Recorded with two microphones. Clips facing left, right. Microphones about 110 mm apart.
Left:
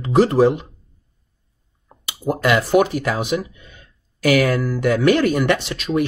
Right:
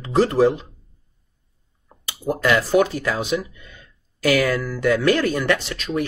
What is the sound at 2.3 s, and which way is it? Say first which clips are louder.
Speech: left 2 dB; 15° left (ahead or behind).